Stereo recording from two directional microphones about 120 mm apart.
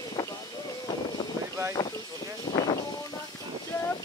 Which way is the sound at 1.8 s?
35° left (ahead or behind).